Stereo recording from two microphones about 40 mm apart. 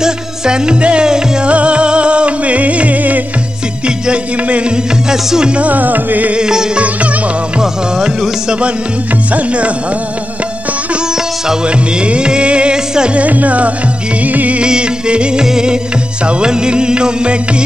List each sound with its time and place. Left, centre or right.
0.0 s music: right
3.8 s music: right
5.1 s music: centre
5.5 s music: right
6.3 s music: centre
9.3 s music: right
11.6 s music: right
13.1 s music: right
14.6 s music: right